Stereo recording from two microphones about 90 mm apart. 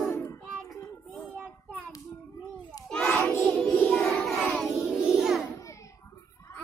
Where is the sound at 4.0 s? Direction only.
15° left (ahead or behind).